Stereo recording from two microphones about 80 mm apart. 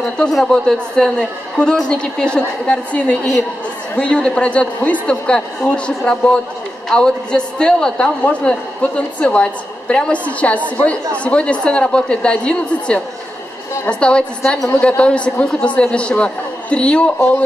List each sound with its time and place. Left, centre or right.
0.3 s a man's voice: centre